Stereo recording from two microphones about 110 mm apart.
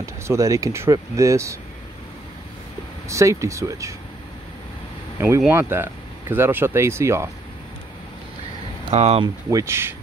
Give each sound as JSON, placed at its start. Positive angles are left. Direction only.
{"t": 0.0, "sound": "speech", "side_deg": -25}
{"t": 3.1, "sound": "speech", "side_deg": -25}
{"t": 5.5, "sound": "speech", "side_deg": -20}
{"t": 8.9, "sound": "speech", "side_deg": -75}
{"t": 9.2, "sound": "speech", "side_deg": -30}